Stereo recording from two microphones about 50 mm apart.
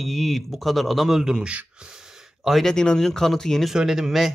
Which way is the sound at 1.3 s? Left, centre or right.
Centre.